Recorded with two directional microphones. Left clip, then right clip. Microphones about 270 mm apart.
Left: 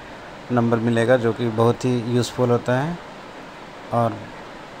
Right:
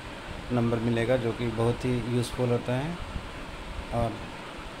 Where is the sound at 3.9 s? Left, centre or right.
Centre.